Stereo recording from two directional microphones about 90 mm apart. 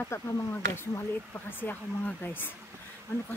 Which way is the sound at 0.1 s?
30° left (ahead or behind).